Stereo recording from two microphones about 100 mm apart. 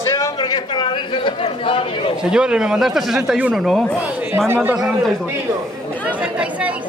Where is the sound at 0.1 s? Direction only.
40° left (ahead or behind); by 2.1 s 65° left (ahead or behind).